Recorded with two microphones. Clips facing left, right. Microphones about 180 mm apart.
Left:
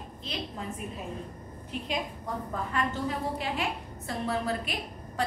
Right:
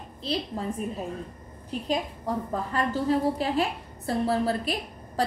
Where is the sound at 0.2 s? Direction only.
35° right (ahead or behind).